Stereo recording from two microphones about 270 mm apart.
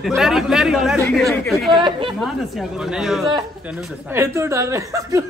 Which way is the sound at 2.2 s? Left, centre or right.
Centre.